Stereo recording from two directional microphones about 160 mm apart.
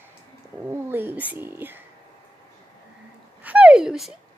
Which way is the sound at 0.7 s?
15° right (ahead or behind).